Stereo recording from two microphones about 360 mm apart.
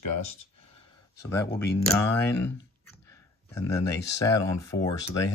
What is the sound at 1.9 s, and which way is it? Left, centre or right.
Speech, centre.